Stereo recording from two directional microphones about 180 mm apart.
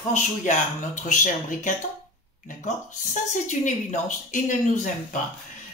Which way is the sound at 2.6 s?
45° left (ahead or behind).